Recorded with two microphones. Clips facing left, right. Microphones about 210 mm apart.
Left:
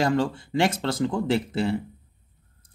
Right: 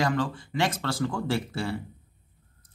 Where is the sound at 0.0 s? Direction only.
25° left (ahead or behind).